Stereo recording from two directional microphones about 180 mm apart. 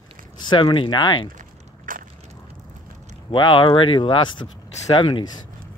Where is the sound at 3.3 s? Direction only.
25° left (ahead or behind).